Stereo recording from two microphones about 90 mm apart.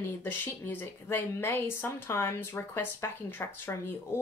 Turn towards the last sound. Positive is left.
turn(degrees=25)  # may be behind; listen again after turning